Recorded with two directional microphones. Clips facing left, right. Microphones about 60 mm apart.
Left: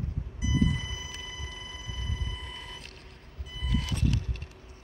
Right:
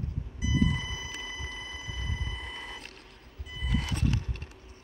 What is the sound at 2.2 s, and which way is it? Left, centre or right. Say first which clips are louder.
Mechanisms: right 2 dB; right.